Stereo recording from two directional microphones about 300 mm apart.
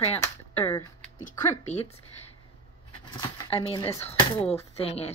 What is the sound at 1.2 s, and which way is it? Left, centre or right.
Speech, left.